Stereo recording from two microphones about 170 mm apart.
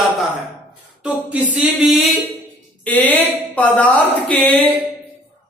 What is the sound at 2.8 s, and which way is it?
Speech, 10° left (ahead or behind).